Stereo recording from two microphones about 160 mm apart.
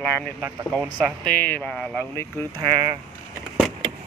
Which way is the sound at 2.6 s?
30° right (ahead or behind).